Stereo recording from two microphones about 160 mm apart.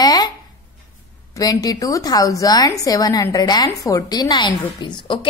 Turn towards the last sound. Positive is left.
turn(degrees=30)  # may be behind; listen again after turning